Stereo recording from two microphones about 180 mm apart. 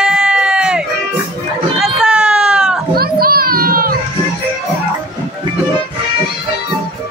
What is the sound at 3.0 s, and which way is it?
Children playing, 55° right (ahead or behind).